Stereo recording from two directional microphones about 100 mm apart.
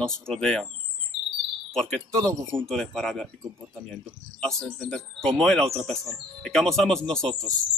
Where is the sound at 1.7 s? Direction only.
5° left (ahead or behind).